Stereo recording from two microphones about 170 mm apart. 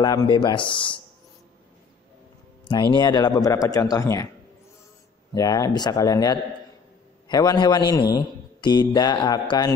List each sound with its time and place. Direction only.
0.0 s a man's voice: 20° left (ahead or behind)
2.7 s a man's voice: 30° left (ahead or behind)
5.3 s a man's voice: 20° left (ahead or behind)